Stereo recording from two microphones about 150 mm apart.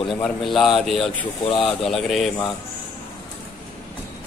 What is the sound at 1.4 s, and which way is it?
Speech, 40° left (ahead or behind).